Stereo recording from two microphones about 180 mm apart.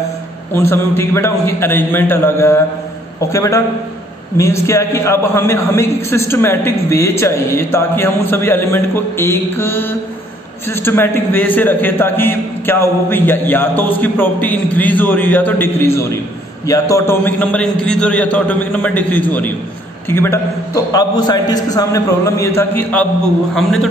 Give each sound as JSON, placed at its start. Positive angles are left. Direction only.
{"t": 0.6, "sound": "a man's voice", "side_deg": 15}